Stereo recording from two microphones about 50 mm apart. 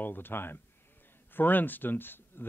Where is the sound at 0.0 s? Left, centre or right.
Left.